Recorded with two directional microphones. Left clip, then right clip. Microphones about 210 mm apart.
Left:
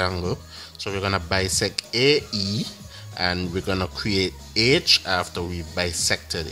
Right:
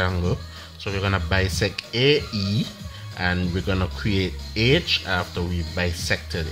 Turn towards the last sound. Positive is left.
turn(degrees=15)  # may be behind; listen again after turning